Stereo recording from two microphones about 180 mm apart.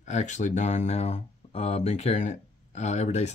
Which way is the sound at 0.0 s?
40° left (ahead or behind).